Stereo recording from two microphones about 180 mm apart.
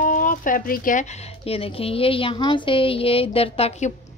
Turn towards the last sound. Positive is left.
turn(degrees=35)  # may be behind; listen again after turning